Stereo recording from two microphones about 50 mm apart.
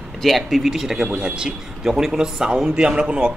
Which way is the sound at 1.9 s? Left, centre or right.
Centre.